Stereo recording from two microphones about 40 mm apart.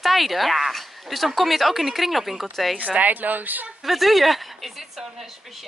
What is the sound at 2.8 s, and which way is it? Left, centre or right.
Speech, right.